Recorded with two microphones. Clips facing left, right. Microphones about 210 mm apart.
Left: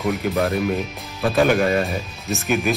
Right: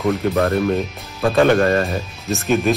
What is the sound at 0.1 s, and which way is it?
Speech, centre (ahead or behind).